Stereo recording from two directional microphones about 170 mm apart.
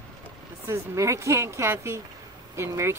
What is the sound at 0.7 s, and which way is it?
Speech, 20° right (ahead or behind).